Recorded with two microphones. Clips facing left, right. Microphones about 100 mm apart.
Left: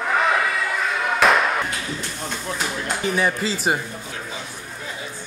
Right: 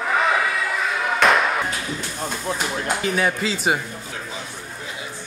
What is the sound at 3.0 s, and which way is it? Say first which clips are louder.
Speech: left 2 dB; centre (ahead or behind).